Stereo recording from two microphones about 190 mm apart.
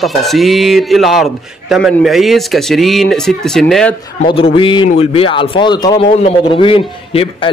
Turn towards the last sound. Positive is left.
turn(degrees=30)  # may be behind; listen again after turning